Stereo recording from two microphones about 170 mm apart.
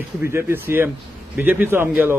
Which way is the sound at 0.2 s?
15° right (ahead or behind).